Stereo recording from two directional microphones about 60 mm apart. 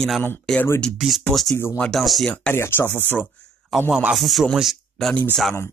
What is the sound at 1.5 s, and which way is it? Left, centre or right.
Speech, left.